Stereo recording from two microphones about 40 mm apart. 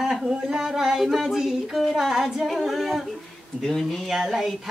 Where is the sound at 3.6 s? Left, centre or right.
Centre.